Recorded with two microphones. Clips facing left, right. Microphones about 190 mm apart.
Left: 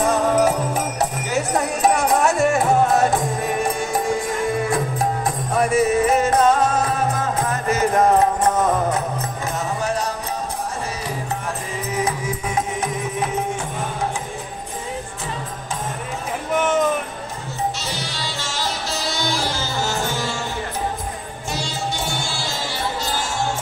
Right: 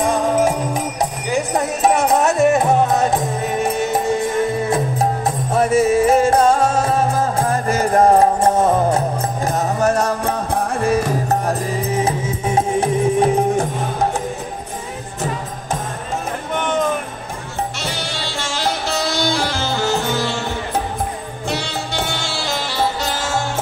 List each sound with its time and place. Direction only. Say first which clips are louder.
1.3 s jingle bell: right 3 dB; 20° right (ahead or behind)
2.0 s music: right 2 dB; centre (ahead or behind)
2.4 s music: right 3 dB; 20° right (ahead or behind); by 11.5 s 45° right (ahead or behind)
11.8 s music: even; 30° right (ahead or behind)
16.5 s music: left 1 dB; 5° left (ahead or behind)
18.4 s music: right 6 dB; 60° right (ahead or behind)
21.5 s music: right 2 dB; 65° right (ahead or behind)